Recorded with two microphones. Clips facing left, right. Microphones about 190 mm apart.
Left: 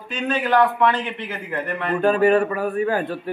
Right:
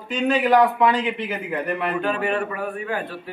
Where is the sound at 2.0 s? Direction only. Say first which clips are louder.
Left 12 dB; 40° left (ahead or behind).